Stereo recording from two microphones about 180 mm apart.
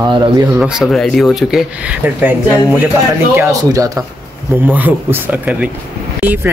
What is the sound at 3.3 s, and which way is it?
Speech, 15° right (ahead or behind).